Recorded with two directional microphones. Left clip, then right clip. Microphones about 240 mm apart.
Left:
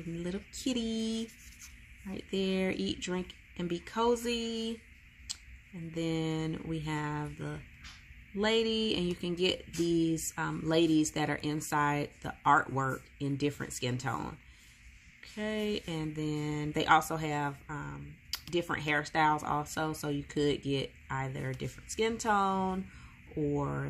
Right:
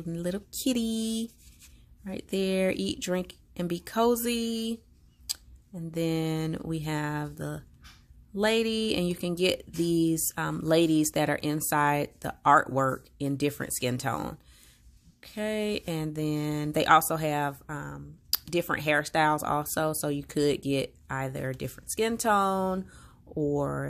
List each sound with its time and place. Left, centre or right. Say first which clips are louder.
0.2 s speech: right 7 dB; right
5.9 s speech: right 4 dB; right